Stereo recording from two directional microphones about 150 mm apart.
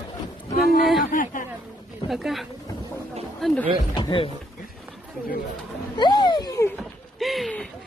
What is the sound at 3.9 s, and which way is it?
Speech, 35° left (ahead or behind).